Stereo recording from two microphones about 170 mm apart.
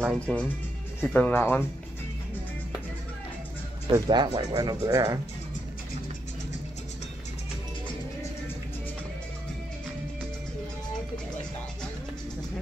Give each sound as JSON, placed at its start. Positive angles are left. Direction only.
{"t": 0.0, "sound": "speech", "side_deg": 5}
{"t": 3.8, "sound": "speech", "side_deg": -25}